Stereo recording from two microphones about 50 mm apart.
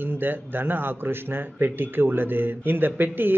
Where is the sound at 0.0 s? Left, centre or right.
Right.